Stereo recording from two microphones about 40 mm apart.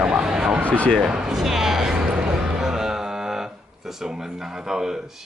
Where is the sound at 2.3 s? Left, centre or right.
Centre.